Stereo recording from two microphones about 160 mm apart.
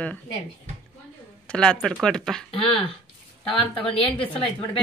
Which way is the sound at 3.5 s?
35° left (ahead or behind).